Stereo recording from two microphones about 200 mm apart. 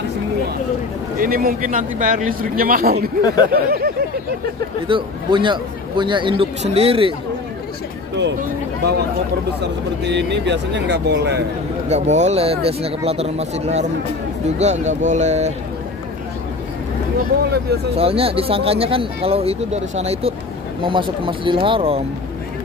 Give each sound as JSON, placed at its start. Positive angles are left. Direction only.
{"t": 1.2, "sound": "speech", "side_deg": -45}
{"t": 3.2, "sound": "speech", "side_deg": 20}
{"t": 3.5, "sound": "speech", "side_deg": -50}
{"t": 4.8, "sound": "speech", "side_deg": -25}
{"t": 10.0, "sound": "speech", "side_deg": -60}
{"t": 11.9, "sound": "speech", "side_deg": -35}
{"t": 17.9, "sound": "speech", "side_deg": -30}